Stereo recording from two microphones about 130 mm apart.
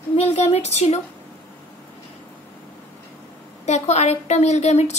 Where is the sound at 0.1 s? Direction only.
55° left (ahead or behind).